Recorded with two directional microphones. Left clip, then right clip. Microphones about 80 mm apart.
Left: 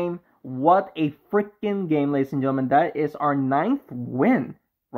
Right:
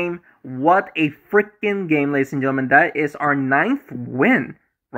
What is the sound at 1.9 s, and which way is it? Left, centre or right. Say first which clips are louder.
Speech: right 2 dB; centre.